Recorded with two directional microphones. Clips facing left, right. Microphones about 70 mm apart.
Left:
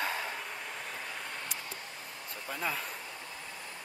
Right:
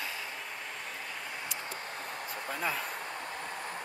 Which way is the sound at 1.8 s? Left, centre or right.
Right.